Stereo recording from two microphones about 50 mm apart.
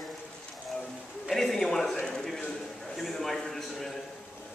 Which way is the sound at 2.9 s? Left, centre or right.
Centre.